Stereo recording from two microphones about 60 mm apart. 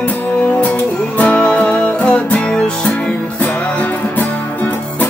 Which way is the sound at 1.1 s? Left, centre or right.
Left.